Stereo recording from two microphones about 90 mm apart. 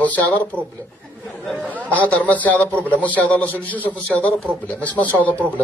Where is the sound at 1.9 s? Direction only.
15° left (ahead or behind).